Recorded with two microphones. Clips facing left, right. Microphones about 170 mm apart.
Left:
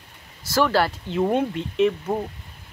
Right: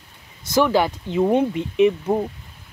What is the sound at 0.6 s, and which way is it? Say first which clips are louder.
Speech: right 3 dB; 15° right (ahead or behind).